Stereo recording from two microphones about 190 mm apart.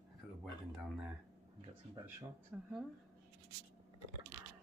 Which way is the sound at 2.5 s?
5° right (ahead or behind).